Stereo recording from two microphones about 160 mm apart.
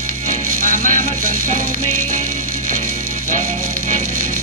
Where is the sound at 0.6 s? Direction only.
55° right (ahead or behind).